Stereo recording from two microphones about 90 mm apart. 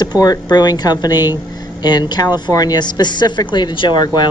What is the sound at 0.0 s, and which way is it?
A man's voice, 45° left (ahead or behind).